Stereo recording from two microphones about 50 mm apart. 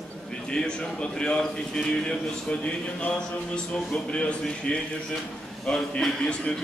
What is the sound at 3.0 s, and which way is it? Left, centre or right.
A man's voice, left.